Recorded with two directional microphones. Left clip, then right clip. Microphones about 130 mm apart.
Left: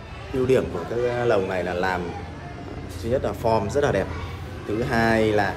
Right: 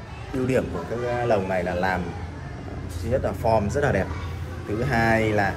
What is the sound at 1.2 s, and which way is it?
Speech, 35° left (ahead or behind).